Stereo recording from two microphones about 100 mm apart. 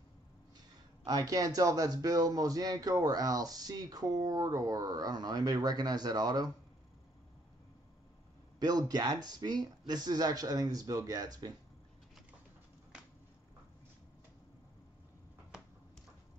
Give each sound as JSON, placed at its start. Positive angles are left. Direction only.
{"t": 1.0, "sound": "a man's voice", "side_deg": -40}
{"t": 8.5, "sound": "a man's voice", "side_deg": -45}